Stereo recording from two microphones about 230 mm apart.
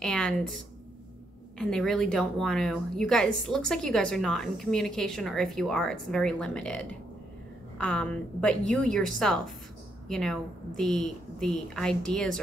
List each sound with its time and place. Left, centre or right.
0.0 s a woman's voice: centre
1.6 s a woman's voice: centre
7.8 s a woman's voice: centre